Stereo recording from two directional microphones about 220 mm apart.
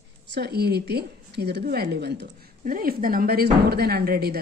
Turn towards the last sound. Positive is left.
turn(degrees=-45)  # may be behind; listen again after turning